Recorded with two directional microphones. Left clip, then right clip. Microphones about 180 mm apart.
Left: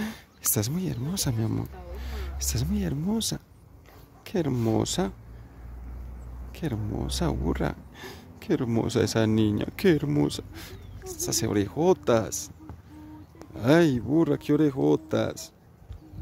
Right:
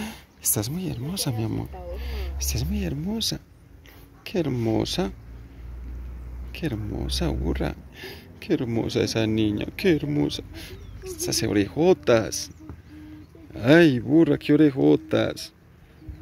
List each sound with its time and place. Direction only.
0.7 s speech: 30° left (ahead or behind)
6.5 s speech: 15° left (ahead or behind)
13.6 s speech: 5° left (ahead or behind)